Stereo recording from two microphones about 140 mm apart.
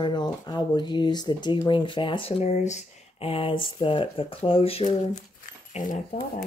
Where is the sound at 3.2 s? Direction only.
40° left (ahead or behind).